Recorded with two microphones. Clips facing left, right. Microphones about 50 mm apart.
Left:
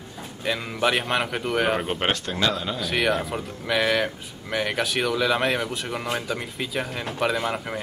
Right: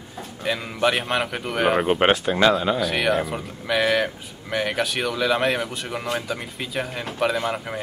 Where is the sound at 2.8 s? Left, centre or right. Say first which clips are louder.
Right 2 dB; centre.